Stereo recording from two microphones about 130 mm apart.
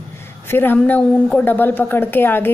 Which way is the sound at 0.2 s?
15° left (ahead or behind).